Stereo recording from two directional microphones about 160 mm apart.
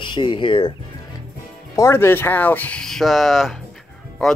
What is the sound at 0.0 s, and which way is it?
Speech, 30° left (ahead or behind).